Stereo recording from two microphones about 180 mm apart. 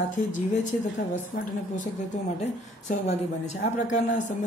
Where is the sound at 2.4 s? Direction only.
40° left (ahead or behind).